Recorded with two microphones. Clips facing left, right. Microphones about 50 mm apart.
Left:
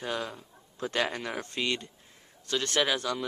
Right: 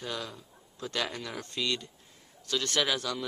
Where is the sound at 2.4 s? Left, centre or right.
Centre.